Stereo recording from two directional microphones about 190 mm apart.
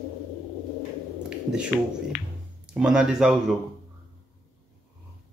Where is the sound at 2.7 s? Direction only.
5° right (ahead or behind).